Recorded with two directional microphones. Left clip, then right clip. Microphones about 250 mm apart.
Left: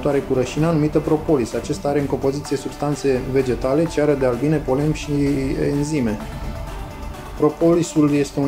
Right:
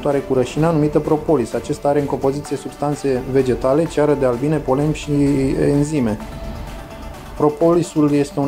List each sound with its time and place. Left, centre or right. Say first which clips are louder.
0.0 s speech: right 2 dB; centre
7.6 s speech: right 1 dB; centre